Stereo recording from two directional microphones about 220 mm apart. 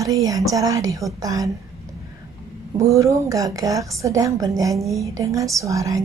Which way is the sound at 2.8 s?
15° right (ahead or behind).